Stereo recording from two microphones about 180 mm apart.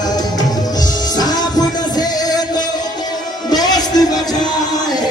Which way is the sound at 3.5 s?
20° left (ahead or behind).